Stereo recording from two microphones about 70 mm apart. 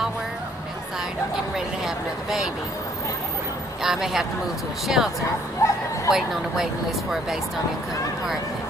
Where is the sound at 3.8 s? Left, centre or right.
Centre.